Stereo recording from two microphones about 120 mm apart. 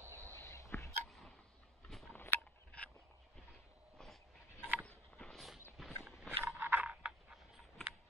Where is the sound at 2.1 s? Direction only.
15° left (ahead or behind).